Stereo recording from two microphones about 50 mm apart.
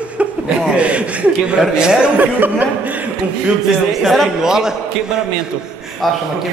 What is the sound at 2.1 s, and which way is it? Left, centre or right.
Speech, right.